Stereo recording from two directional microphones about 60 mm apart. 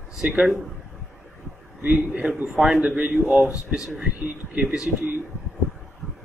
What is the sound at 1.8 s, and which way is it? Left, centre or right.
A man's voice, right.